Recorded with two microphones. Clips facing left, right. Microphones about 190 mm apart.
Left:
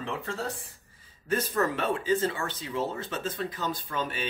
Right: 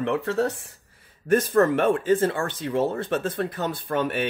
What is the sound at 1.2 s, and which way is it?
Speech, 50° right (ahead or behind).